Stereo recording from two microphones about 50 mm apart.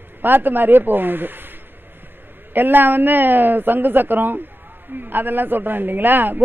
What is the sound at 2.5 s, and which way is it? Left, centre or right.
A man's voice, right.